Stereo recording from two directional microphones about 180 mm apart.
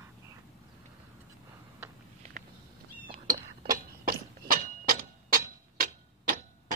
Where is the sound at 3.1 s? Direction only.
50° right (ahead or behind).